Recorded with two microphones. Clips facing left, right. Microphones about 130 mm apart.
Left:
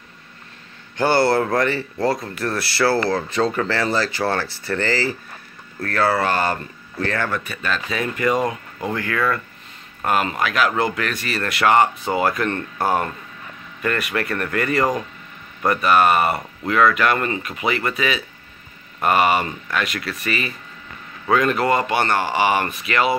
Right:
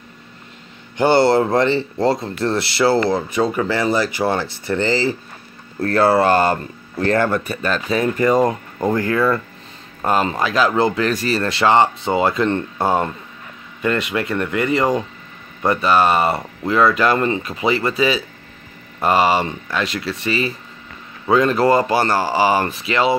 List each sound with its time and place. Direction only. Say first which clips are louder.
0.9 s speech: right 3 dB; 20° right (ahead or behind)